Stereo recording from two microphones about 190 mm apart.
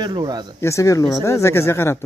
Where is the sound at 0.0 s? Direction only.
20° right (ahead or behind).